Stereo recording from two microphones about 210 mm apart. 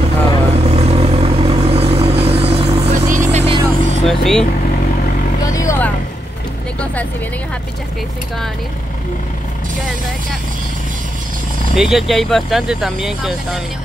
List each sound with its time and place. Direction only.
0.5 s vehicle: 30° right (ahead or behind)
4.0 s vehicle: centre (ahead or behind)
5.4 s vehicle: 15° left (ahead or behind)
11.7 s speech: centre (ahead or behind)